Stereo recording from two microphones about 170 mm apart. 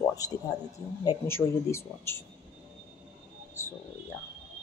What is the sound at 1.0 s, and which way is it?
Speech, 15° left (ahead or behind).